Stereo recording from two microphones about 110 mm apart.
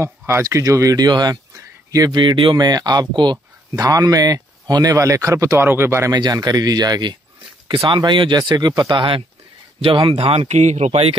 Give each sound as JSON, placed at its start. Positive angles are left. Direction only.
{"t": 0.0, "sound": "speech", "side_deg": -25}
{"t": 2.2, "sound": "speech", "side_deg": -50}
{"t": 3.7, "sound": "speech", "side_deg": -30}
{"t": 6.1, "sound": "speech", "side_deg": -40}
{"t": 7.6, "sound": "speech", "side_deg": -50}